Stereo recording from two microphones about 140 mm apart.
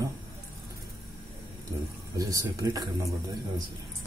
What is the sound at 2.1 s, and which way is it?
Speech, 25° right (ahead or behind).